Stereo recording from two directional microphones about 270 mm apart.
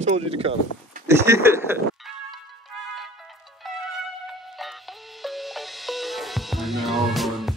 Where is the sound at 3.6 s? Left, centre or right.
Centre.